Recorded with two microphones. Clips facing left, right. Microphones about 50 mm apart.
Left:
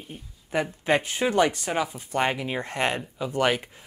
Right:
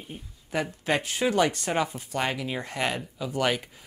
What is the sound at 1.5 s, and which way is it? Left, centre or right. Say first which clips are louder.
Speech: even; centre.